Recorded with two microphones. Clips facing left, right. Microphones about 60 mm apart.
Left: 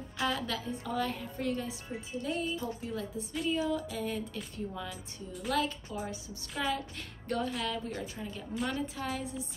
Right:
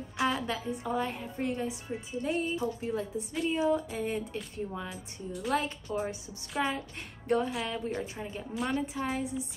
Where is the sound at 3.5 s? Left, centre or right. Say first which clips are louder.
Right 4 dB; right.